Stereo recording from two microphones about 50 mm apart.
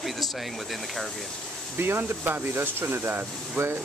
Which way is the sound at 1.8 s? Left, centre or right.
Right.